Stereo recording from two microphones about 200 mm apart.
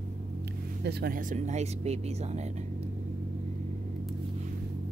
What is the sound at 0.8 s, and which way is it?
Speech, 50° right (ahead or behind).